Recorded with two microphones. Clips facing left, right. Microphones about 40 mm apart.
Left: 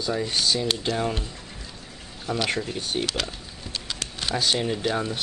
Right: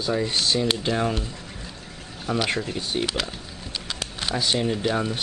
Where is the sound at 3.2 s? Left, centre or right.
Centre.